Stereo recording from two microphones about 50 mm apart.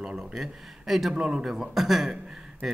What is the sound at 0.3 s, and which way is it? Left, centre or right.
Speech, centre.